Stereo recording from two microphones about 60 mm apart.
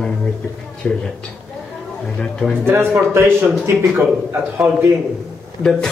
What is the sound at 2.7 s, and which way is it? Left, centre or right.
Speech, right.